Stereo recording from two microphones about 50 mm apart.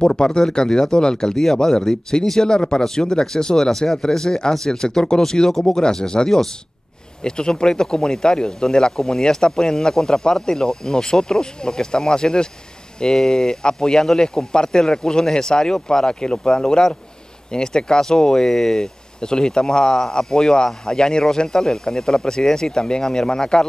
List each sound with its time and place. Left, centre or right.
0.0 s speech: centre